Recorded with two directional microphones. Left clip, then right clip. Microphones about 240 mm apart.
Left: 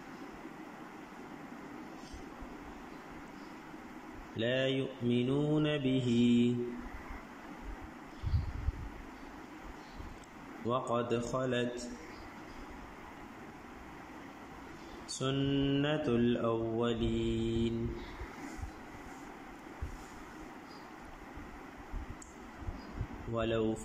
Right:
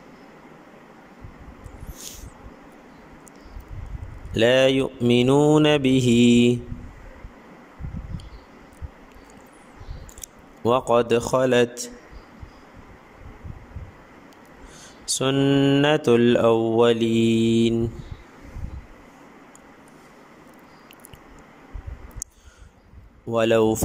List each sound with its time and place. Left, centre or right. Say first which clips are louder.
4.4 s speech: right 15 dB; right
10.7 s speech: right 14 dB; right
15.1 s speech: right 14 dB; right
23.3 s speech: right 15 dB; right